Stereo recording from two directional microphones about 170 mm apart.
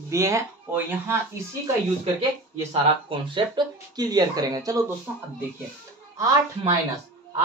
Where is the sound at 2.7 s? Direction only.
30° right (ahead or behind).